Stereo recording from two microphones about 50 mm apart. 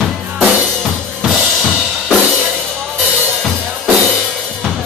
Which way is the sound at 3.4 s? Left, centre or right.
Centre.